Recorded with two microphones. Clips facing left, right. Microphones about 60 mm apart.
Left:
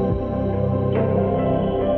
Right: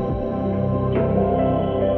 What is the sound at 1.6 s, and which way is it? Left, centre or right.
Music, centre.